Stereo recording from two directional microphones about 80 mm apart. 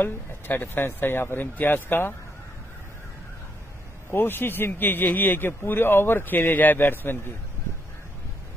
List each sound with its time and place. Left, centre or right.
0.0 s speech: left
4.1 s speech: left